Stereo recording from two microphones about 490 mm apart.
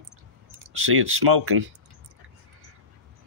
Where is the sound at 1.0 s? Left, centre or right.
Right.